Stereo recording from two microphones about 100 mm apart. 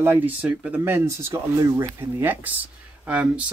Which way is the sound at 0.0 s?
20° right (ahead or behind).